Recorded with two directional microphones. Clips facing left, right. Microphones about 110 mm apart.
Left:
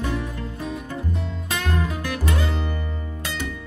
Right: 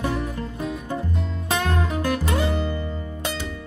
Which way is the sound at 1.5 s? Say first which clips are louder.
Right 3 dB; 30° right (ahead or behind).